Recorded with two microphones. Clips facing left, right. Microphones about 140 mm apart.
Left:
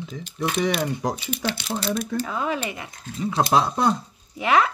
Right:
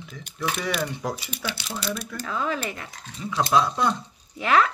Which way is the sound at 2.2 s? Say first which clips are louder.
Left 1 dB; 10° left (ahead or behind).